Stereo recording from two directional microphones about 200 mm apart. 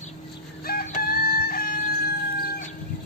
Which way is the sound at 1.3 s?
50° left (ahead or behind).